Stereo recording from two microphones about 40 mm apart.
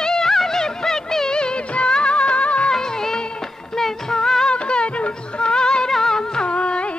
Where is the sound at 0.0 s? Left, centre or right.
Centre; by 2.7 s left.